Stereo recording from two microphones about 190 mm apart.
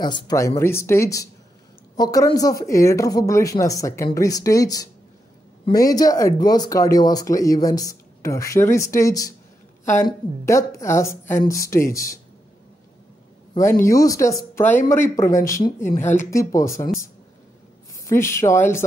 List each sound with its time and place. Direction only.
0.0 s speech: 20° left (ahead or behind)
13.6 s speech: 15° left (ahead or behind)
18.0 s speech: 15° left (ahead or behind)